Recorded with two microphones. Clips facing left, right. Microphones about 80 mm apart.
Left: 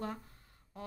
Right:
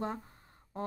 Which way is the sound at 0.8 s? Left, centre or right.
Right.